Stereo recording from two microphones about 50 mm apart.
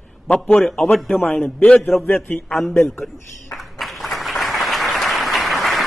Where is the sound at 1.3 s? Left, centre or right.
Left.